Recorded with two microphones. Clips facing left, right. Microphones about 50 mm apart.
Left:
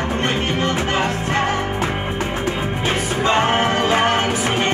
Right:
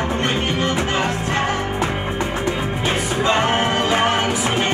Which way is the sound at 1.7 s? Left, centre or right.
Centre.